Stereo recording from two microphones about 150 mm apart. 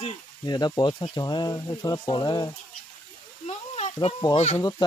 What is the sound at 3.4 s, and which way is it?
Snake, 45° left (ahead or behind).